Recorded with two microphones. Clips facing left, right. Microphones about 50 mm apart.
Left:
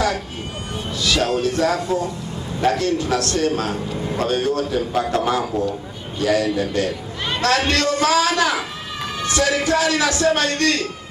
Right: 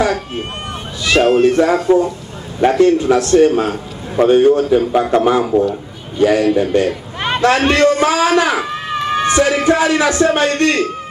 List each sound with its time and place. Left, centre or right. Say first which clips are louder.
1.0 s a man's voice: right 9 dB; right